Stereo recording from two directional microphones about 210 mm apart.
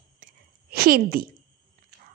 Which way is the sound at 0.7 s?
45° right (ahead or behind).